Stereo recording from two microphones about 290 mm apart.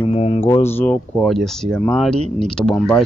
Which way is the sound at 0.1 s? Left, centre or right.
Centre.